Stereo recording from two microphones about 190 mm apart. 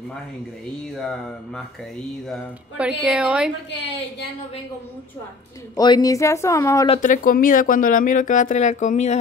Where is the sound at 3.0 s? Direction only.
5° right (ahead or behind).